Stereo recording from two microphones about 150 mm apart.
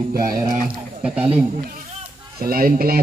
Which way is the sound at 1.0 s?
5° right (ahead or behind).